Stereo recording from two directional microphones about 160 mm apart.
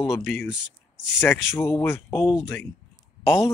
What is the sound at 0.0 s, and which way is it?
Speech, centre (ahead or behind).